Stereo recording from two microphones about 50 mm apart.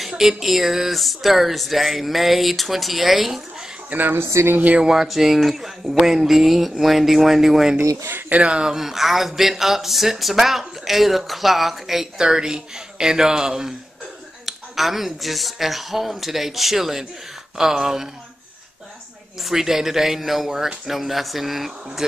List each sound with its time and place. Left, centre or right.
0.2 s speech: centre
3.9 s speech: right
4.7 s speech: centre
8.3 s speech: right
8.7 s speech: centre
19.4 s speech: centre